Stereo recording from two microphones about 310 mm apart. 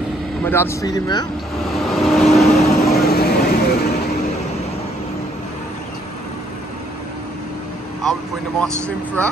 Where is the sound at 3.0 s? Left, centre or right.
Left.